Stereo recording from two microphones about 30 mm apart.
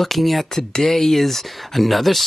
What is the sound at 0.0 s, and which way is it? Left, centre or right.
Speech, centre.